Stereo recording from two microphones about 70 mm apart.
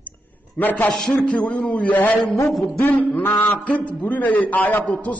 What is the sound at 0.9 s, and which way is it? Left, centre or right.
A man's voice, centre.